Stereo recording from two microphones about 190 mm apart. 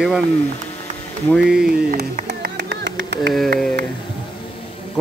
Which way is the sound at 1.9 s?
55° right (ahead or behind).